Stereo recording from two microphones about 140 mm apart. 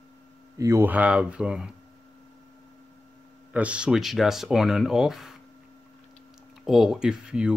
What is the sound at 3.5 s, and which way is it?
Speech, 10° right (ahead or behind).